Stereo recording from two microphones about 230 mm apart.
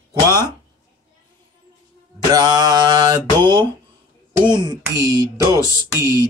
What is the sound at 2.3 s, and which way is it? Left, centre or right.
Speech, centre.